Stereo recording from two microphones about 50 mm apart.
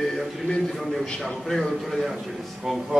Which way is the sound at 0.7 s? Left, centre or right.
Centre.